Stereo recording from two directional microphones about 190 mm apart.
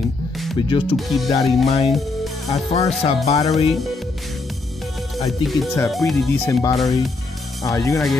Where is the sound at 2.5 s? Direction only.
35° left (ahead or behind).